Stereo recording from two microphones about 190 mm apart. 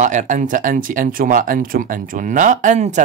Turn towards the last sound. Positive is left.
turn(degrees=-40)  # may be behind; listen again after turning